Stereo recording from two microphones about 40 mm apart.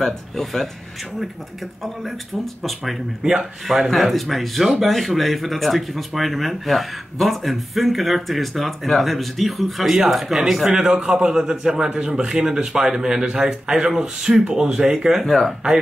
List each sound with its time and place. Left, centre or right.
0.0 s speech: centre
1.8 s a man's voice: centre
10.7 s a man's voice: centre
15.2 s speech: centre